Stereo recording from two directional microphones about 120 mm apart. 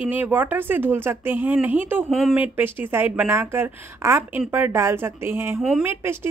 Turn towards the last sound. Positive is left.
turn(degrees=-20)  # may be behind; listen again after turning